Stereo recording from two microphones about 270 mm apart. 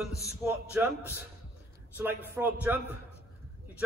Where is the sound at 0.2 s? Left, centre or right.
Centre.